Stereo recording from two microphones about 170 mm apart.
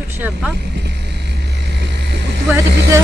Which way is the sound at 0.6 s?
80° right.